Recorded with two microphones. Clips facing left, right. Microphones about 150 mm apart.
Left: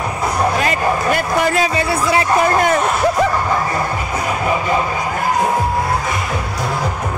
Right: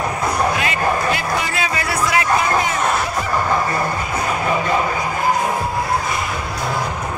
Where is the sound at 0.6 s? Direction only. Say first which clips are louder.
Left 2 dB; 40° left (ahead or behind).